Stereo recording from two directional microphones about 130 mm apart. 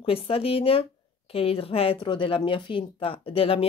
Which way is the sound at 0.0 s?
45° left (ahead or behind).